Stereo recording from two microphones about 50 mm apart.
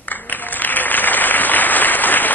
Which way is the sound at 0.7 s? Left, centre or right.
Left.